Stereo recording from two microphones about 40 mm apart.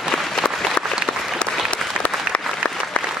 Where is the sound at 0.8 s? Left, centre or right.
Left.